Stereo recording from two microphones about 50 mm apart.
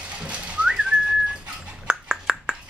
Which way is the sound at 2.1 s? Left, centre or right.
Centre.